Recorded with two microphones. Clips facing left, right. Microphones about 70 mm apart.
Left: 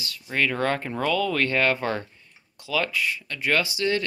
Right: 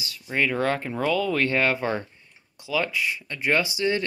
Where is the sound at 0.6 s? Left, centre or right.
Centre.